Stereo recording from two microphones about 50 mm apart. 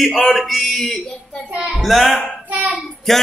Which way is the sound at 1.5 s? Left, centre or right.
Right.